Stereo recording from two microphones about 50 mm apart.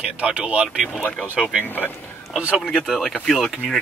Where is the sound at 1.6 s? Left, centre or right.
Left.